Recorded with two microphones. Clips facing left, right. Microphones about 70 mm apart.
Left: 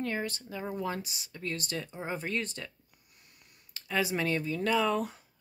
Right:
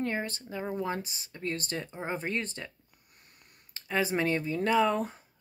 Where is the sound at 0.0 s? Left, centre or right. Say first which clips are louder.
Right 1 dB; right.